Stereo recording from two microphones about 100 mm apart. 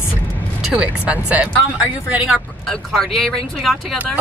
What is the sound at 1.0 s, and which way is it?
Speech, 15° right (ahead or behind).